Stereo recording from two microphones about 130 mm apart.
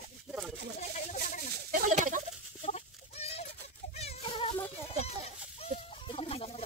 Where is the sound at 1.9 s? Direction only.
70° right (ahead or behind).